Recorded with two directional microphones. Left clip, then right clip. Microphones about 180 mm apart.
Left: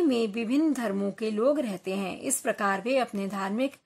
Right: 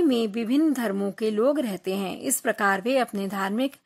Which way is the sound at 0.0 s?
35° right (ahead or behind).